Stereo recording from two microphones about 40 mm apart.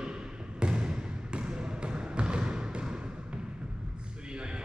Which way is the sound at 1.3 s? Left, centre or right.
Right.